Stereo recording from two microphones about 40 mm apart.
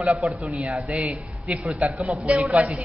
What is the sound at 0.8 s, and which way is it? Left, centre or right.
Speech, right.